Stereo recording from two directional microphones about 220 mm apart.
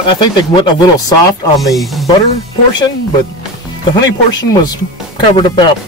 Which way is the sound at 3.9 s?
20° left (ahead or behind).